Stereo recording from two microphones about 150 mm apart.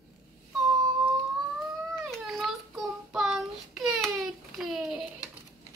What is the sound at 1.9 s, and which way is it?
Child singing, centre (ahead or behind).